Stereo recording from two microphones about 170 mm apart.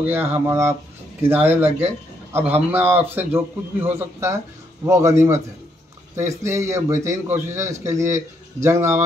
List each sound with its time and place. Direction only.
0.0 s a man's voice: 15° right (ahead or behind)